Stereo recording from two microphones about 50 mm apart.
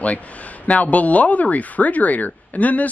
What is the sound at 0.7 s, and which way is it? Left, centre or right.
Speech, left.